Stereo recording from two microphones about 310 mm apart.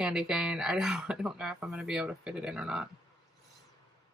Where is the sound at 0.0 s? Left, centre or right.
Centre.